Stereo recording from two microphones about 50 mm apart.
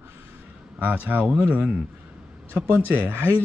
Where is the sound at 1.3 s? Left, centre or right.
Right.